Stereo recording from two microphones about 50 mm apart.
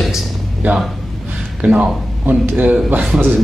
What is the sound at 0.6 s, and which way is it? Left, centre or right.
Speech, right.